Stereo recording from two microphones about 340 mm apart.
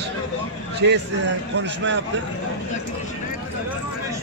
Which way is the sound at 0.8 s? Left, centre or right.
Right.